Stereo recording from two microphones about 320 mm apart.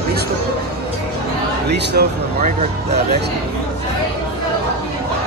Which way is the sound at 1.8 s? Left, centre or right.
Right.